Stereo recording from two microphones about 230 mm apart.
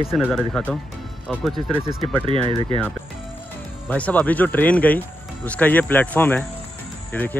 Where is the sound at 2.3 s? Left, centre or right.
Right.